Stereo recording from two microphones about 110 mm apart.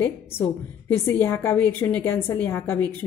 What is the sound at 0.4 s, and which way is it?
A woman's voice, 25° left (ahead or behind).